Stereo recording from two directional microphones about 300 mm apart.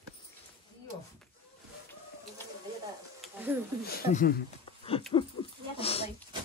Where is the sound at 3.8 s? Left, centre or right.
Left.